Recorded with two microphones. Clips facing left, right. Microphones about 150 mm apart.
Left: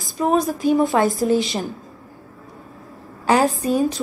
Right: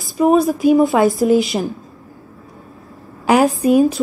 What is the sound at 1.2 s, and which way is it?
Speech, 20° right (ahead or behind).